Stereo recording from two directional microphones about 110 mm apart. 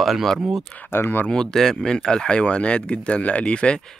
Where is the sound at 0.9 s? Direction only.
20° left (ahead or behind).